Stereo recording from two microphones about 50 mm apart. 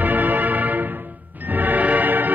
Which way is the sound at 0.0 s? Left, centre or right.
Right.